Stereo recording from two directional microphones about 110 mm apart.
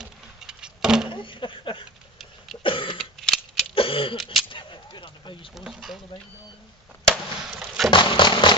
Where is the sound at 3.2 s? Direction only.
5° left (ahead or behind).